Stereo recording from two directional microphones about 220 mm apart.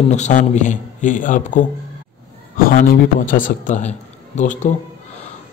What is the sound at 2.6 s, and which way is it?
A man's voice, 40° left (ahead or behind).